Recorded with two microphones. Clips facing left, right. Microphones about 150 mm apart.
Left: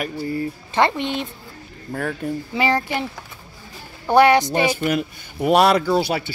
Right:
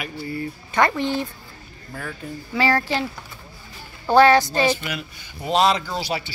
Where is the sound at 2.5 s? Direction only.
20° left (ahead or behind).